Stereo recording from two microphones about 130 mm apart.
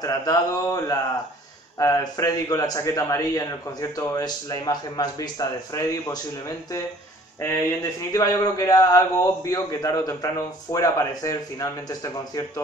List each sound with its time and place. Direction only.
0.0 s a man's voice: 25° left (ahead or behind)